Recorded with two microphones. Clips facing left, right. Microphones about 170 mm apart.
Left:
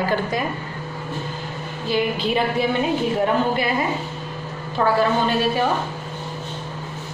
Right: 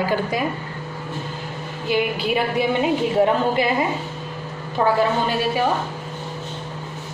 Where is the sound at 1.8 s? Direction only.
15° right (ahead or behind).